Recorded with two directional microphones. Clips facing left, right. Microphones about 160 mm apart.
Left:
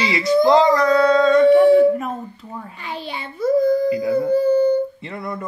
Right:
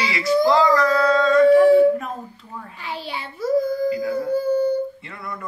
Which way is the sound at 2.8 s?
5° right (ahead or behind).